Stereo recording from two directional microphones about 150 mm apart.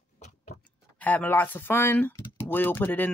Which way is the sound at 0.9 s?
10° left (ahead or behind).